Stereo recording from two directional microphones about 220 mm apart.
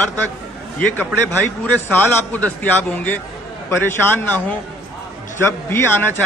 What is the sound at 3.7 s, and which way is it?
Speech, 10° left (ahead or behind).